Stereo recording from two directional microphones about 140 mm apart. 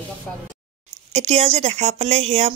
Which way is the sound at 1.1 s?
55° right (ahead or behind).